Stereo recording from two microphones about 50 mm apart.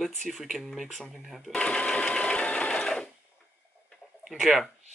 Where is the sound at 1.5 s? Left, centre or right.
Centre.